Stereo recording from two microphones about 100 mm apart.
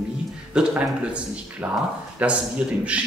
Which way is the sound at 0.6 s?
10° right (ahead or behind).